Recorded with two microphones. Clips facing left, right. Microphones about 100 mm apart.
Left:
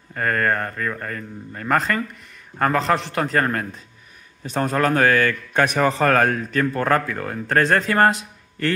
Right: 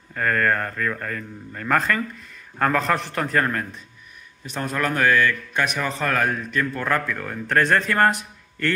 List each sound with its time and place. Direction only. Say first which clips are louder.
0.1 s a man's voice: even; 25° left (ahead or behind)
2.6 s a man's voice: left 1 dB; centre (ahead or behind)
3.2 s a man's voice: left 2 dB; 30° left (ahead or behind)